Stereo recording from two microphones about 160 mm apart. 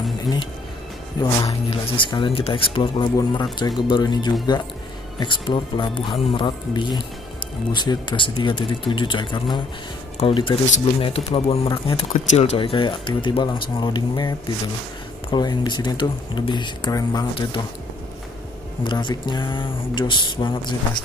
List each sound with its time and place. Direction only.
1.2 s speech: 35° left (ahead or behind)
18.9 s speech: 30° left (ahead or behind)